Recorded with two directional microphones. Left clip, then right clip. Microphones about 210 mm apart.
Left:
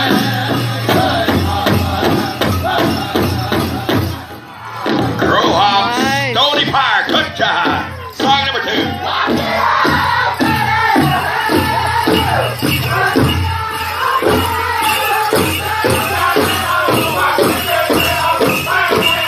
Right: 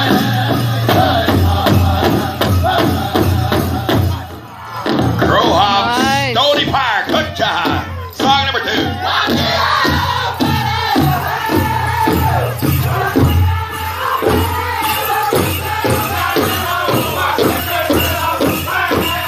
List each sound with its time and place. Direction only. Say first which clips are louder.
0.0 s music: even; 40° right (ahead or behind)
4.8 s music: even; 40° right (ahead or behind)
5.8 s music: even; 10° right (ahead or behind)
6.3 s music: left 2 dB; 40° right (ahead or behind); by 11.0 s 20° right (ahead or behind)